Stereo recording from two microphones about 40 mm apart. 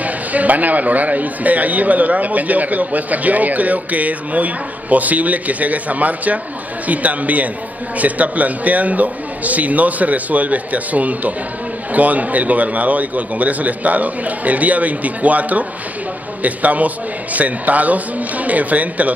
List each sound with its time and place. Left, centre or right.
0.0 s speech: right